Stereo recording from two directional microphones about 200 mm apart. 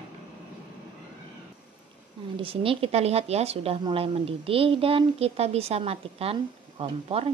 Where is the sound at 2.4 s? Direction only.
25° right (ahead or behind).